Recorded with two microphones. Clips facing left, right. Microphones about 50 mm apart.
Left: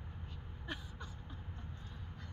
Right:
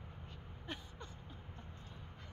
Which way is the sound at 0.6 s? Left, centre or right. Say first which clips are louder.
Left 2 dB; centre.